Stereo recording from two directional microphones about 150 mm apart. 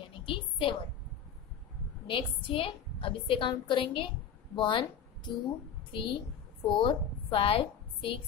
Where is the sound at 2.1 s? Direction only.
35° left (ahead or behind).